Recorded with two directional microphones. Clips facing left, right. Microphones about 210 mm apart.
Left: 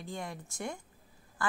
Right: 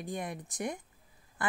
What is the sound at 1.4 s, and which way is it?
Quack, 20° right (ahead or behind).